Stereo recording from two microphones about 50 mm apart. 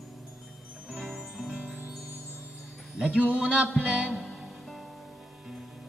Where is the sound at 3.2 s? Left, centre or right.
Right.